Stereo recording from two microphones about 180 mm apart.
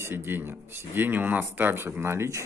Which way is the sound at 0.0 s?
10° right (ahead or behind).